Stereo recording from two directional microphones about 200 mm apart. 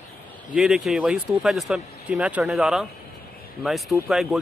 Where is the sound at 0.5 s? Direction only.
Centre (ahead or behind).